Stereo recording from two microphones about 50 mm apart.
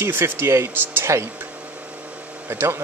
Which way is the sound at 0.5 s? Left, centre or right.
Right.